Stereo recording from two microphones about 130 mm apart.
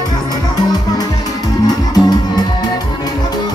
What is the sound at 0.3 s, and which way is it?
Music, 30° left (ahead or behind).